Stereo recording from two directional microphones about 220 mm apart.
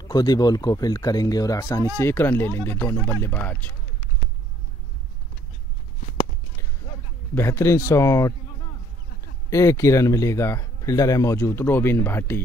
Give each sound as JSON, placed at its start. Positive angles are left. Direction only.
{"t": 0.0, "sound": "speech", "side_deg": 20}
{"t": 7.3, "sound": "speech", "side_deg": 10}
{"t": 9.5, "sound": "speech", "side_deg": 15}